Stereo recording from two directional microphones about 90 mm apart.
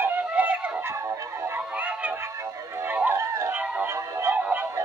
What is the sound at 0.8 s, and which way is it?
Music, 35° right (ahead or behind).